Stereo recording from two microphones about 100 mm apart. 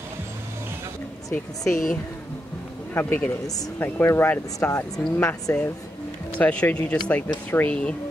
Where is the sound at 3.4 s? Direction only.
35° left (ahead or behind).